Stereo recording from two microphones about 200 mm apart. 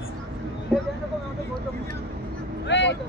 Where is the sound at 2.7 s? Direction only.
60° left (ahead or behind).